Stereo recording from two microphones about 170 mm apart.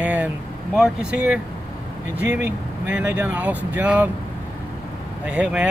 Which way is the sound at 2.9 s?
5° right (ahead or behind).